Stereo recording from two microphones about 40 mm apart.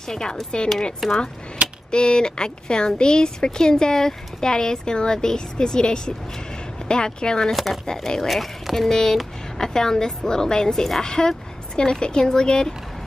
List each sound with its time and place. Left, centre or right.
0.1 s speech: centre
1.0 s speech: centre
1.9 s speech: left
7.5 s speech: centre
7.8 s speech: centre
8.3 s speech: centre